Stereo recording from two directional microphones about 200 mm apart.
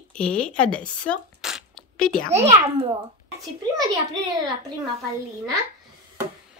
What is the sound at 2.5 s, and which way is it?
Speech, 30° right (ahead or behind).